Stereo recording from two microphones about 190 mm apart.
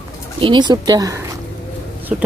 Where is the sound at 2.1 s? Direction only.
5° right (ahead or behind).